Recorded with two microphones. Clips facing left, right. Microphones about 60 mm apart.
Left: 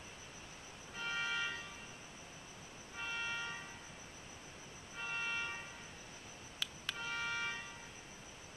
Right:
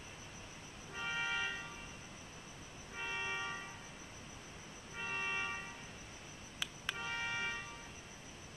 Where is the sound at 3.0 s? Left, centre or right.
Centre.